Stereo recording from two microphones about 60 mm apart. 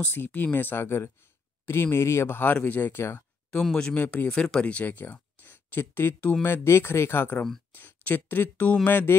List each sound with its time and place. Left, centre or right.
0.0 s speech: left
3.9 s speech: left